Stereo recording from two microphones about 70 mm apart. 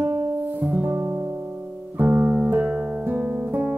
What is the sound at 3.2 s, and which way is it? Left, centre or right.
Guitar, centre.